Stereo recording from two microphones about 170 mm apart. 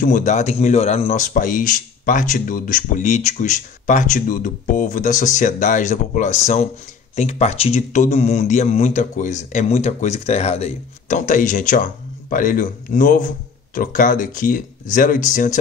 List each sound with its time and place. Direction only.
0.0 s speech: 50° left (ahead or behind)